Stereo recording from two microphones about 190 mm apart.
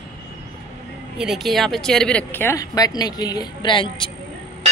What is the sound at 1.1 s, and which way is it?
Speech, centre (ahead or behind).